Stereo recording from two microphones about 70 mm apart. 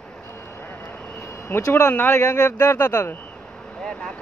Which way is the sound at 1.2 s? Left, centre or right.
Left.